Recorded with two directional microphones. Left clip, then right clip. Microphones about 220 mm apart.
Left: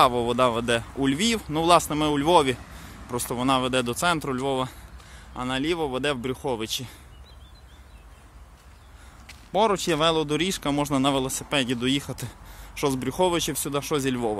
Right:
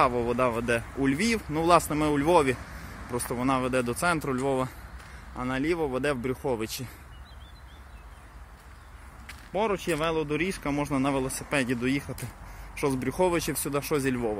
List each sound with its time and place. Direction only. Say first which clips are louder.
0.0 s speech: left 4 dB; 20° left (ahead or behind)
9.5 s speech: left 5 dB; 35° left (ahead or behind); by 14.2 s 15° left (ahead or behind)